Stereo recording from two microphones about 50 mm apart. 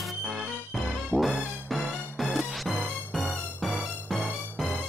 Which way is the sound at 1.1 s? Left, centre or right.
Centre.